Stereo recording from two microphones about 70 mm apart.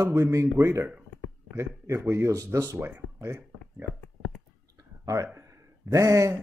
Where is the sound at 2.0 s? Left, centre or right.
Right.